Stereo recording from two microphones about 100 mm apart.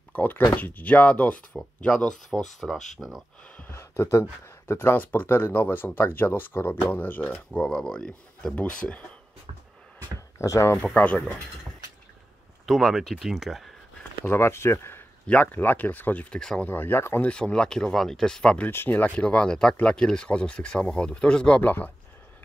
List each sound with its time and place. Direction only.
0.1 s speech: 15° left (ahead or behind)
1.6 s speech: 5° left (ahead or behind)
3.5 s speech: 25° left (ahead or behind)
7.6 s speech: 5° left (ahead or behind)
10.4 s speech: 30° left (ahead or behind)
11.0 s speech: 10° left (ahead or behind)
12.6 s speech: centre (ahead or behind)
14.2 s speech: 25° left (ahead or behind); by 16.6 s 10° left (ahead or behind)
16.6 s speech: 20° left (ahead or behind)
17.3 s speech: 10° left (ahead or behind)
18.7 s speech: 20° left (ahead or behind)